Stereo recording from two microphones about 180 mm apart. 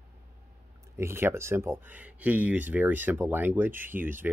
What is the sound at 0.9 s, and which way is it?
Speech, 15° right (ahead or behind).